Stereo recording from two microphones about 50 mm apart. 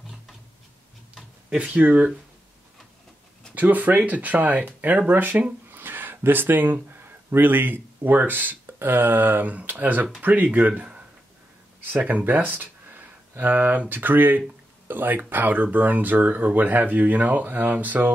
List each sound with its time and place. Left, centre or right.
1.5 s speech: right
3.5 s speech: right
12.0 s speech: right